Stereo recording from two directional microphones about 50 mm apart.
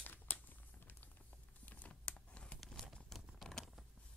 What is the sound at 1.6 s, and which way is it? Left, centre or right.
Computer keyboard, left.